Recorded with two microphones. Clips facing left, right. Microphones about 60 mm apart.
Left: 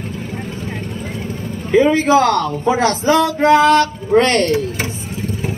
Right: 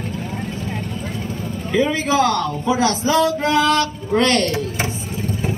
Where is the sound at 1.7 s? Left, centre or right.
Left.